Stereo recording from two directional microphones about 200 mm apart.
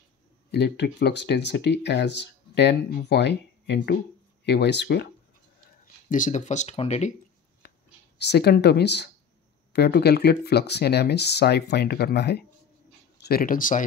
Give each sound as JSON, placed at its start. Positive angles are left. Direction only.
{"t": 0.5, "sound": "speech", "side_deg": 55}
{"t": 6.0, "sound": "speech", "side_deg": 40}
{"t": 7.6, "sound": "whispering", "side_deg": 50}
{"t": 8.2, "sound": "speech", "side_deg": 55}